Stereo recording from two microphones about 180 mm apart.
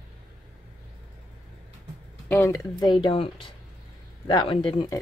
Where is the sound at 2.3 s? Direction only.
15° left (ahead or behind).